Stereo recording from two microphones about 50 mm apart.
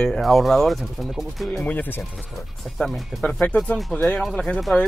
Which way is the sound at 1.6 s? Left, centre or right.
Left.